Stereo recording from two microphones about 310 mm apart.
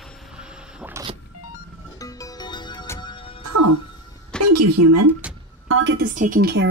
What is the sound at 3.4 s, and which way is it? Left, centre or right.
Music, right.